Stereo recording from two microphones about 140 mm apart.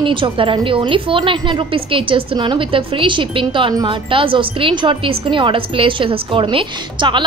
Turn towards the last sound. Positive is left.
turn(degrees=-35)  # may be behind; listen again after turning